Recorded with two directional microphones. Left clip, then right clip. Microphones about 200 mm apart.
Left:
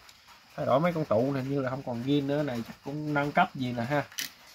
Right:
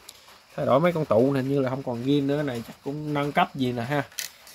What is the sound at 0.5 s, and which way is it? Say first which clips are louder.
Speech: right 5 dB; 40° right (ahead or behind).